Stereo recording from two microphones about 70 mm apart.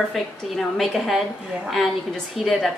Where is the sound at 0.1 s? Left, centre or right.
Centre.